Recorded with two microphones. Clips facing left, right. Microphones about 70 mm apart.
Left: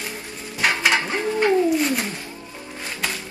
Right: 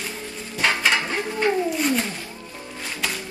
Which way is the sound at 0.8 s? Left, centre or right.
Left.